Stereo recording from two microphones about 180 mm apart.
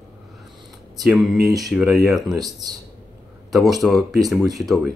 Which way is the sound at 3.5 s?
Centre (ahead or behind).